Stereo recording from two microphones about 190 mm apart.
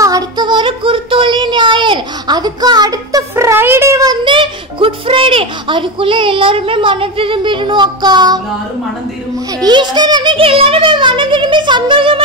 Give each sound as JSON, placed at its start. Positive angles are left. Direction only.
{"t": 0.0, "sound": "speech", "side_deg": -20}
{"t": 9.6, "sound": "speech", "side_deg": -20}